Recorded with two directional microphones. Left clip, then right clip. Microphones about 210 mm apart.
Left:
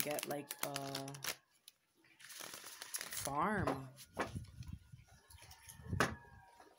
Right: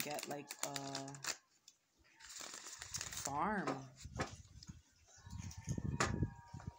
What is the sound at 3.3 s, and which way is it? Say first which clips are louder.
Speech: left 2 dB; 55° left (ahead or behind).